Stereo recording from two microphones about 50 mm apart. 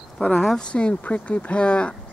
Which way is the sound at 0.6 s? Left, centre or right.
Centre.